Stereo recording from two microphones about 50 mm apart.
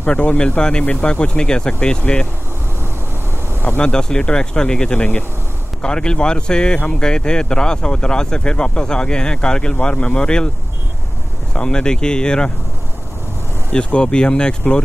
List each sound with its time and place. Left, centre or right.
0.0 s speech: left
3.8 s speech: centre
11.5 s speech: centre
13.7 s speech: left